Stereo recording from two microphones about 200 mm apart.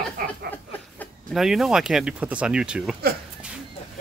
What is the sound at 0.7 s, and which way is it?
Speech, 5° left (ahead or behind).